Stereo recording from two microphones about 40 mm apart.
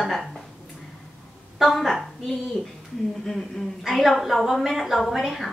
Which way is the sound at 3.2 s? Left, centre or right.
Centre.